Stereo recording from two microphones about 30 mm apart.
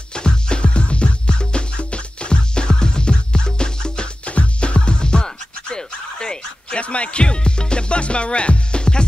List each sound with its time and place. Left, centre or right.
0.1 s music: left
4.3 s music: left
6.8 s music: left